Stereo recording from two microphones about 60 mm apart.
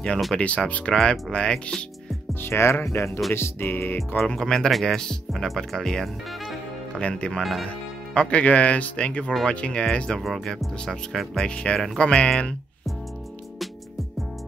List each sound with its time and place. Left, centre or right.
0.4 s speech: left
2.4 s speech: left
3.3 s music: left
4.4 s speech: centre
6.9 s speech: centre
11.4 s speech: centre